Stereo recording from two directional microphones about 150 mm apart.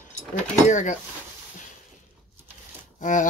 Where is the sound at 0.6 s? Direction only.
55° left (ahead or behind).